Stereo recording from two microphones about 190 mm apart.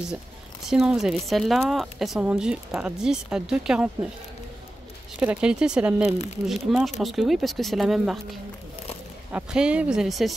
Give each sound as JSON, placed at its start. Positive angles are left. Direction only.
{"t": 0.7, "sound": "a woman's voice", "side_deg": 0}
{"t": 5.2, "sound": "a woman's voice", "side_deg": -5}
{"t": 6.1, "sound": "speech", "side_deg": 35}
{"t": 6.7, "sound": "a woman's voice", "side_deg": 0}